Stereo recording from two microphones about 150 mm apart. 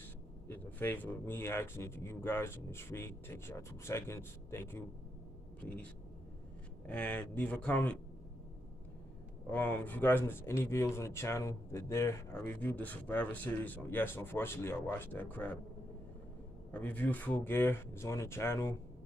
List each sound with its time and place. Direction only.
0.5 s speech: 15° left (ahead or behind)
6.9 s speech: 10° left (ahead or behind)
9.5 s speech: 10° left (ahead or behind)
16.7 s speech: 10° left (ahead or behind)